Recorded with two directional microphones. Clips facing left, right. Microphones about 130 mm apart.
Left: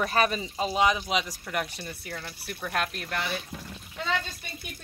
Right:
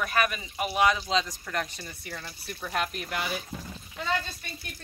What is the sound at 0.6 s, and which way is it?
Speech, 20° left (ahead or behind).